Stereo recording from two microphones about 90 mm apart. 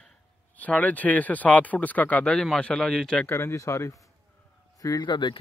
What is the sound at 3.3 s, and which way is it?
Speech, 30° left (ahead or behind).